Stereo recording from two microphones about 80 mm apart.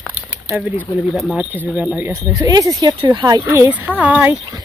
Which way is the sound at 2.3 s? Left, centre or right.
Right.